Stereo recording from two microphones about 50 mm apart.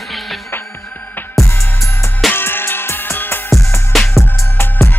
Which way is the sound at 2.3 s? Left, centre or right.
Left.